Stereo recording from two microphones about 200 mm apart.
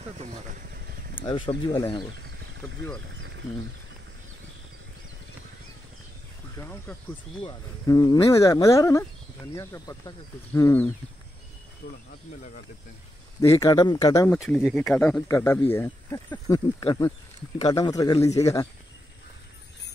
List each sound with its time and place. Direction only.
0.2 s vehicle: 40° right (ahead or behind)
1.1 s speech: 25° left (ahead or behind)
6.6 s speech: 10° left (ahead or behind)
13.4 s speech: 15° left (ahead or behind)
14.4 s speech: centre (ahead or behind); by 18.7 s 15° left (ahead or behind)